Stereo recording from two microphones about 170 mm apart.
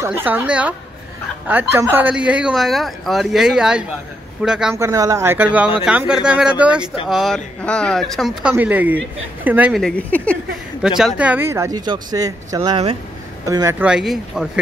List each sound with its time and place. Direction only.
0.0 s speech: 10° right (ahead or behind)
4.7 s speech: 20° right (ahead or behind)
9.8 s speech: 5° left (ahead or behind)
10.8 s speech: 5° right (ahead or behind); by 13.7 s 20° right (ahead or behind)
13.7 s speech: 5° right (ahead or behind)